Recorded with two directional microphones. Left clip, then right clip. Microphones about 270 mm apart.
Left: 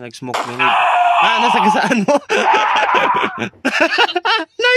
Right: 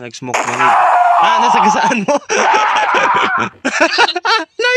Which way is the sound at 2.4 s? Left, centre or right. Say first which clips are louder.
Right 3 dB; right.